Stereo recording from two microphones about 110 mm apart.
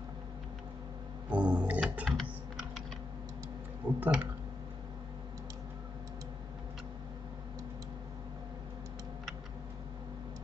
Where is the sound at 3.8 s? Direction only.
50° right (ahead or behind).